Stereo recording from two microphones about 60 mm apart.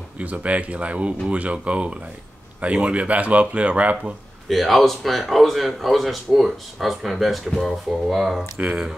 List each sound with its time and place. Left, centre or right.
0.2 s speech: right
4.5 s speech: centre